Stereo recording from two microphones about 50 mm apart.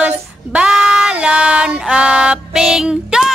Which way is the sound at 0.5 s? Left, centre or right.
Centre.